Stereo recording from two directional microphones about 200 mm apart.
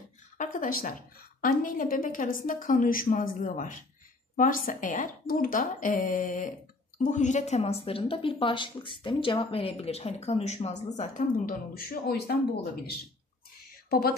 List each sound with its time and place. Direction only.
0.4 s a woman's voice: 40° left (ahead or behind)
11.7 s a woman's voice: 50° left (ahead or behind)
13.8 s whispering: 50° left (ahead or behind)